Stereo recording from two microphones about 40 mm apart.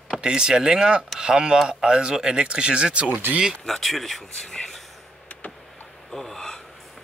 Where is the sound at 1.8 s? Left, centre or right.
Centre.